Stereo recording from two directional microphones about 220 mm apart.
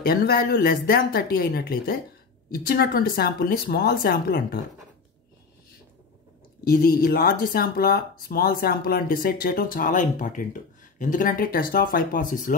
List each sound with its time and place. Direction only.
0.0 s speech: 45° left (ahead or behind)
6.7 s speech: 45° left (ahead or behind)